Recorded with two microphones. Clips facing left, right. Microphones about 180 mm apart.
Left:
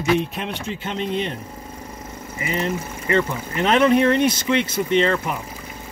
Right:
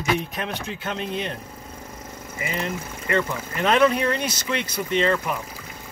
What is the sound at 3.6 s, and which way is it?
Speech, 25° left (ahead or behind).